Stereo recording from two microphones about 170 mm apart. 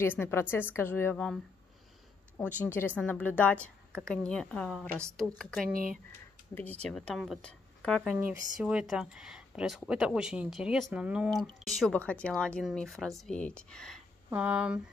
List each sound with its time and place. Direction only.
0.0 s a woman's voice: 15° left (ahead or behind)
2.6 s a woman's voice: 10° left (ahead or behind)
5.7 s speech: 55° right (ahead or behind)
6.5 s speech: 10° left (ahead or behind)
14.3 s speech: 5° right (ahead or behind)